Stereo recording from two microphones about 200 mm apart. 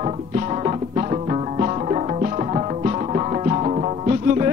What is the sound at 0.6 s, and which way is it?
Music, 30° right (ahead or behind).